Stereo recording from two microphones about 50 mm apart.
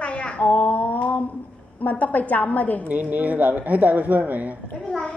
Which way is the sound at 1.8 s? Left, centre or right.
Left.